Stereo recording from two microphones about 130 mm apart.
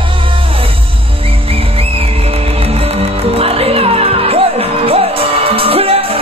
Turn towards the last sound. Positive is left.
turn(degrees=-45)  # may be behind; listen again after turning